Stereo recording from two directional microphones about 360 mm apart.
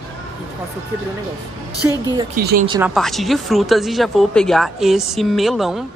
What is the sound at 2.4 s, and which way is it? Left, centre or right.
Speech, right.